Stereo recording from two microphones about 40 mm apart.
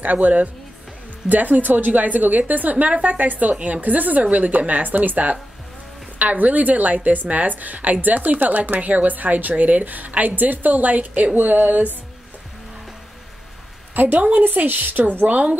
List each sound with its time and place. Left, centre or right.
0.0 s a woman's voice: right
3.5 s a woman's voice: right
3.8 s a woman's voice: right
13.9 s a woman's voice: right